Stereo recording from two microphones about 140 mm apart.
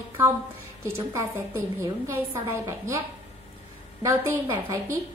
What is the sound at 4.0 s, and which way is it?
Speech, 20° right (ahead or behind).